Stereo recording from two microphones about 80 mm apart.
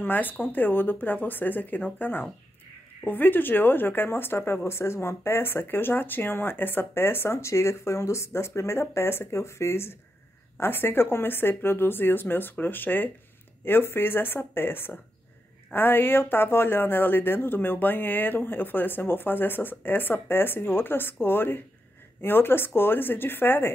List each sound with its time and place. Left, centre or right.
0.0 s speech: left